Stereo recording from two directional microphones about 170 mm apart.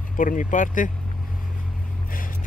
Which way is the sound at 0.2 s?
50° left (ahead or behind).